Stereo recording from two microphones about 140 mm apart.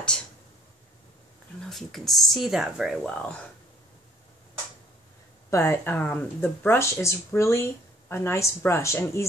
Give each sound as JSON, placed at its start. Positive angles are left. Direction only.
{"t": 1.6, "sound": "speech", "side_deg": 0}
{"t": 5.5, "sound": "speech", "side_deg": 15}